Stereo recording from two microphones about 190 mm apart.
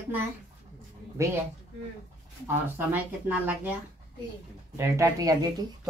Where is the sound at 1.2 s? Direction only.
15° right (ahead or behind).